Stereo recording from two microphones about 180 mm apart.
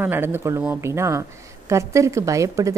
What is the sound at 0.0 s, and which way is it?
A woman's voice, 10° right (ahead or behind).